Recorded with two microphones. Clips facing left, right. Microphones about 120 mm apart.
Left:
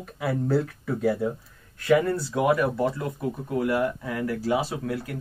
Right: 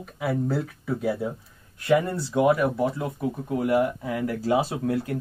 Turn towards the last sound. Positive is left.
turn(degrees=-30)  # may be behind; listen again after turning